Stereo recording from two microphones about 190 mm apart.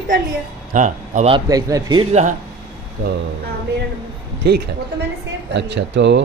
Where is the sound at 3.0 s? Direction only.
55° right (ahead or behind).